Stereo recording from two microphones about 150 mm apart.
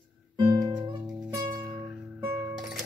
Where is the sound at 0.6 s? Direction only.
20° right (ahead or behind).